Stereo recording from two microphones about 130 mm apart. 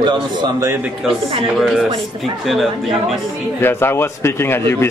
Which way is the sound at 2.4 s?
Centre (ahead or behind).